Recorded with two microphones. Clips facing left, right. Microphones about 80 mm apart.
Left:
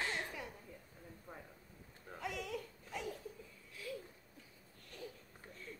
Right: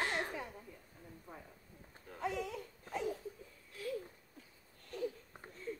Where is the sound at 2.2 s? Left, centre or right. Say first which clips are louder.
Right 4 dB; right.